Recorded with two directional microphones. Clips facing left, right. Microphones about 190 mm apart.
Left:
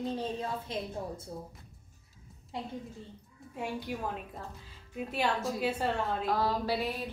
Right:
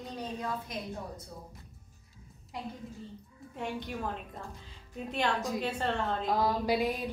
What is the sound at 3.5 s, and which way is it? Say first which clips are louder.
Speech: even; 10° left (ahead or behind).